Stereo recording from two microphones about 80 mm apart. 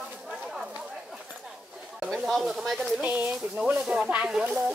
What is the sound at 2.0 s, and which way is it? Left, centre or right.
Speech, centre.